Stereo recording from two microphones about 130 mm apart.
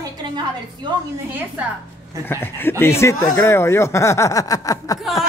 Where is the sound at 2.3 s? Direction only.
15° left (ahead or behind).